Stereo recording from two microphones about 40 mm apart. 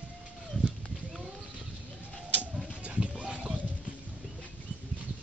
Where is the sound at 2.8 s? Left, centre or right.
Right.